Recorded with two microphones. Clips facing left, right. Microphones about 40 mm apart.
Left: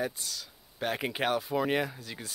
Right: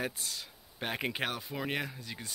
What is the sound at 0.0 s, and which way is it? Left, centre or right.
Speech, right.